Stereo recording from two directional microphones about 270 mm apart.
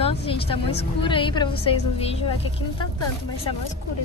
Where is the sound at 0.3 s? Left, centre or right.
Centre.